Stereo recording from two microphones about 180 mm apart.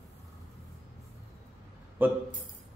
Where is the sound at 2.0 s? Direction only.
10° right (ahead or behind).